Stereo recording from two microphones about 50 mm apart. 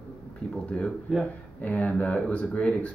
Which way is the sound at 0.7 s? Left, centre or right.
Left.